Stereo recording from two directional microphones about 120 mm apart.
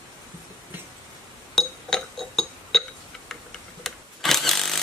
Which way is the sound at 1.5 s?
5° left (ahead or behind).